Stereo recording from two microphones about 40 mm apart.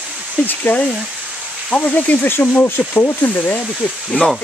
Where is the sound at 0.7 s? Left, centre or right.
Left.